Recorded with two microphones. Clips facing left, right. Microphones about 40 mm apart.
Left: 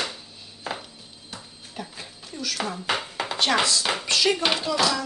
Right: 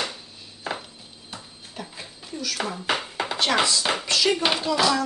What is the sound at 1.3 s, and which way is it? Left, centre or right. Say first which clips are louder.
Dishes: even; centre.